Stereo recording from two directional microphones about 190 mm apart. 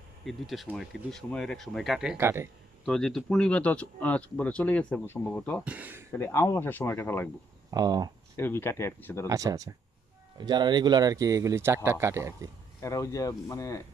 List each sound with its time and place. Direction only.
0.2 s speech: centre (ahead or behind)
2.8 s speech: 5° left (ahead or behind)
5.6 s speech: 10° right (ahead or behind)
6.1 s speech: 15° left (ahead or behind)
7.7 s speech: 20° right (ahead or behind)
8.4 s speech: 10° left (ahead or behind)
9.3 s speech: 15° right (ahead or behind)
12.8 s speech: 15° left (ahead or behind)